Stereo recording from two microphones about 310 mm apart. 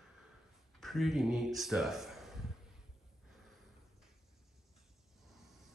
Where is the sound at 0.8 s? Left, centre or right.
Centre.